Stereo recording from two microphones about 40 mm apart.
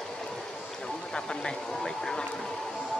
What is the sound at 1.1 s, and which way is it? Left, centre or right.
Speech, centre.